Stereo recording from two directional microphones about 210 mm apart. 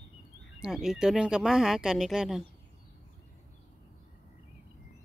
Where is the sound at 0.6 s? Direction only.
Centre (ahead or behind).